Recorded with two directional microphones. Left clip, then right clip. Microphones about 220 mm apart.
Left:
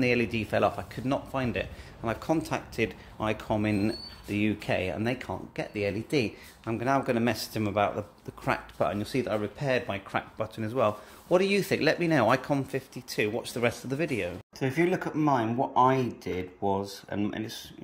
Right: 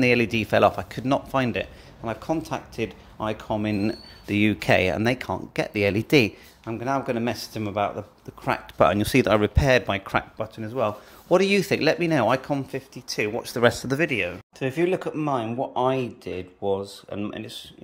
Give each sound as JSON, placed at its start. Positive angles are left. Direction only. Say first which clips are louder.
{"t": 0.0, "sound": "speech", "louder": "right 6 dB", "side_deg": -20}
{"t": 1.6, "sound": "speech", "louder": "right 3 dB", "side_deg": -5}
{"t": 4.3, "sound": "speech", "louder": "right 8 dB", "side_deg": -25}
{"t": 6.6, "sound": "speech", "louder": "right 1 dB", "side_deg": 0}
{"t": 8.7, "sound": "speech", "louder": "right 10 dB", "side_deg": -30}
{"t": 10.3, "sound": "speech", "louder": "right 1 dB", "side_deg": -5}
{"t": 11.2, "sound": "speech", "louder": "right 5 dB", "side_deg": -20}
{"t": 13.7, "sound": "speech", "louder": "right 10 dB", "side_deg": -20}
{"t": 13.9, "sound": "speech", "louder": "right 6 dB", "side_deg": 0}